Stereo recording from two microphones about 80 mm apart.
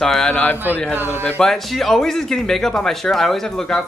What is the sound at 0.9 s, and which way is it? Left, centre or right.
Speech, right.